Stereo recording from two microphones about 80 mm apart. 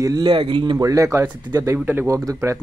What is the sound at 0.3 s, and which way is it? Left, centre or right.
Speech, right.